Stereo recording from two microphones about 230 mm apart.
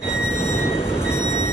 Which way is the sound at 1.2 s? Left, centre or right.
Left.